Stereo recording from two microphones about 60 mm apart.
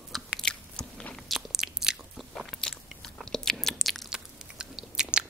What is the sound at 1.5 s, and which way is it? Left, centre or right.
Biting, centre.